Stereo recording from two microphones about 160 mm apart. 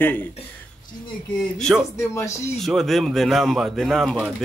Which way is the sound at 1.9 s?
20° left (ahead or behind).